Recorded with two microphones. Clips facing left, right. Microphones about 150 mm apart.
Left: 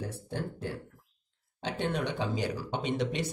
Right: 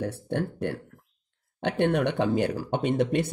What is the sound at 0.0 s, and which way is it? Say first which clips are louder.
Speech: right 7 dB; 65° right (ahead or behind).